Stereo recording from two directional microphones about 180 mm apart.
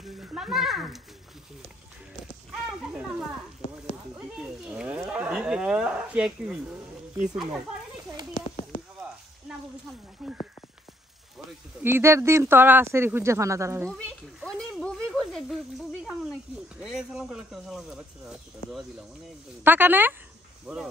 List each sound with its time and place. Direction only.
0.2 s speech: 5° right (ahead or behind)
2.5 s speech: 5° right (ahead or behind)
4.4 s speech: 5° right (ahead or behind)
8.4 s a sound: 35° left (ahead or behind)
10.2 s speech: 5° right (ahead or behind)
14.4 s a sound: centre (ahead or behind)
15.0 s snake: centre (ahead or behind)
16.8 s speech: 5° right (ahead or behind)
19.6 s speech: 10° right (ahead or behind)